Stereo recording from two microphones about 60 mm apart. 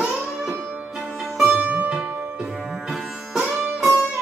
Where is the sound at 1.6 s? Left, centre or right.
Right.